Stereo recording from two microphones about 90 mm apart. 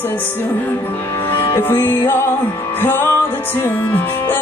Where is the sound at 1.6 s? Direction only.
20° left (ahead or behind).